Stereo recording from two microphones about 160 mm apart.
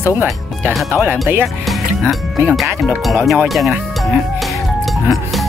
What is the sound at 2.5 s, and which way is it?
Speech, centre (ahead or behind).